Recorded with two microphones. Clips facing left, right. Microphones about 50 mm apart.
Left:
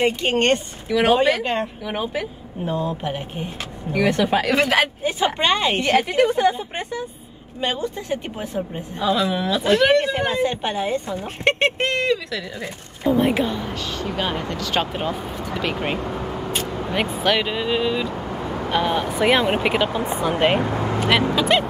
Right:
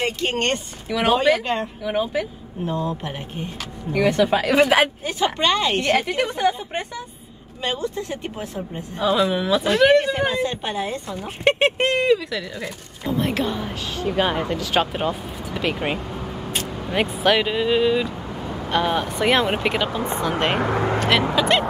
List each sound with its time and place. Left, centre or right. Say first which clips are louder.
0.0 s speech: left 4 dB; centre
0.8 s speech: left 3 dB; centre
1.4 s a woman's voice: left 1 dB; left
1.9 s speech: right 8 dB; centre
2.6 s a woman's voice: left 1 dB; left
3.9 s speech: right 1 dB; centre
5.0 s a woman's voice: left 1 dB; centre
5.9 s speech: left 3 dB; centre
7.6 s a woman's voice: left 1 dB; left
9.1 s speech: right 2 dB; centre
10.3 s a woman's voice: left 2 dB; centre
11.4 s speech: right 1 dB; centre
12.6 s speech: left 6 dB; left
13.4 s speech: left 1 dB; centre